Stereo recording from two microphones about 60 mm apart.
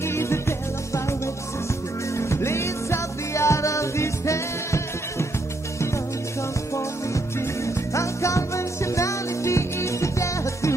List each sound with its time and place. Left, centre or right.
0.0 s music: left
6.7 s music: left